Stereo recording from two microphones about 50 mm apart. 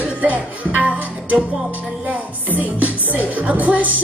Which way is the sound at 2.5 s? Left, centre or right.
Right.